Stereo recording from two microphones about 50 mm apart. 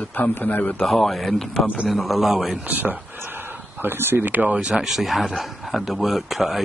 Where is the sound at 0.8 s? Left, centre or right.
Centre.